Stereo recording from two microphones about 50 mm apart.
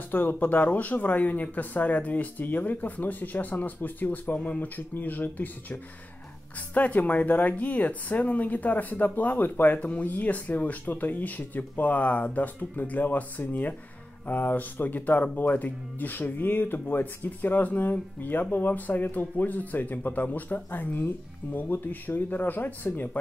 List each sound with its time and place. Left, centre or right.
0.1 s speech: left